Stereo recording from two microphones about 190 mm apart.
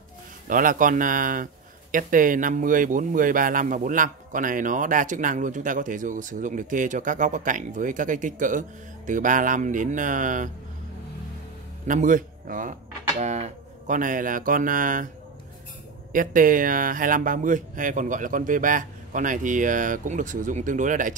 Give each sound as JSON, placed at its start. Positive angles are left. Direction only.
{"t": 0.5, "sound": "speech", "side_deg": -45}
{"t": 11.9, "sound": "speech", "side_deg": -45}
{"t": 16.1, "sound": "speech", "side_deg": -45}